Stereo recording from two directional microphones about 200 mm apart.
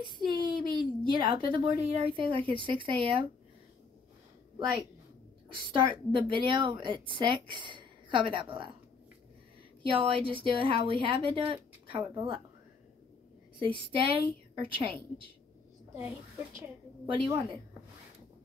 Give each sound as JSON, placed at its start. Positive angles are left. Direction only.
{"t": 0.2, "sound": "a woman's voice", "side_deg": -20}
{"t": 5.7, "sound": "a woman's voice", "side_deg": -25}
{"t": 9.8, "sound": "a woman's voice", "side_deg": -25}
{"t": 13.6, "sound": "a woman's voice", "side_deg": -25}
{"t": 15.9, "sound": "a woman's voice", "side_deg": -15}